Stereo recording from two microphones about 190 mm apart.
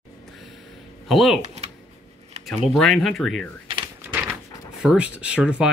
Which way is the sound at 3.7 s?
25° right (ahead or behind).